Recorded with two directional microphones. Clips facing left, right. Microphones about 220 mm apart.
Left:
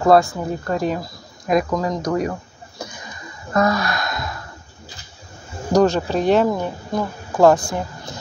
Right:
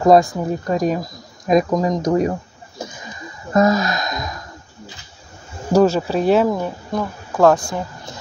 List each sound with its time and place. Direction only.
0.0 s speech: 15° right (ahead or behind)
3.5 s gasp: 25° right (ahead or behind)
5.7 s speech: 5° right (ahead or behind)